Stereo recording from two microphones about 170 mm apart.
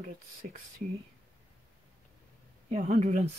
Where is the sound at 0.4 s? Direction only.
55° right (ahead or behind).